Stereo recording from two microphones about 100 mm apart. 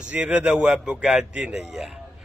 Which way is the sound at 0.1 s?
15° right (ahead or behind).